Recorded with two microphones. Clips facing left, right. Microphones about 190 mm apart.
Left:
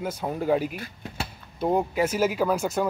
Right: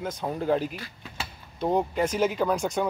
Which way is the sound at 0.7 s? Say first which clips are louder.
Left 3 dB; 50° left (ahead or behind).